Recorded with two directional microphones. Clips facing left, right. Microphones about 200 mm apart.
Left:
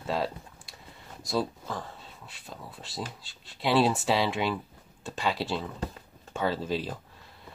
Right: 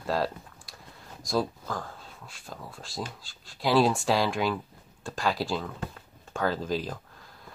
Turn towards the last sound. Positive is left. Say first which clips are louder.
# even
turn(degrees=5)  # may be behind; listen again after turning